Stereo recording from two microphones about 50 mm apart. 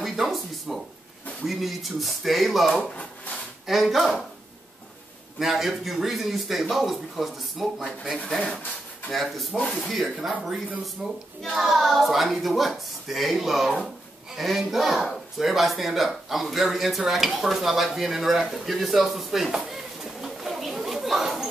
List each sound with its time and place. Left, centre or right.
0.0 s a sound: centre
1.4 s speech: centre
5.4 s speech: centre
9.1 s speech: centre
9.6 s speech: left
9.8 s speech: centre
19.7 s chatter: centre